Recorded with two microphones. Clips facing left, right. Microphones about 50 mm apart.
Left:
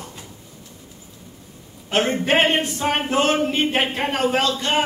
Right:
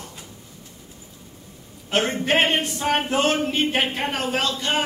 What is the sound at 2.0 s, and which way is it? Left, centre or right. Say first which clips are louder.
A man's voice: left 3 dB; left.